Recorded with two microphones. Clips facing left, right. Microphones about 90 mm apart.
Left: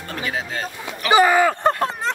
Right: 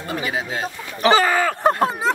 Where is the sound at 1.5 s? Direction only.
10° right (ahead or behind).